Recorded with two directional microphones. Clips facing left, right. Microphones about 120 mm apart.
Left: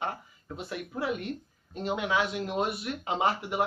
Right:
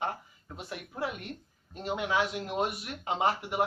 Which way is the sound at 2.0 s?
Centre (ahead or behind).